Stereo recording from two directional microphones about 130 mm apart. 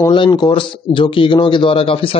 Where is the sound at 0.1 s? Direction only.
35° left (ahead or behind).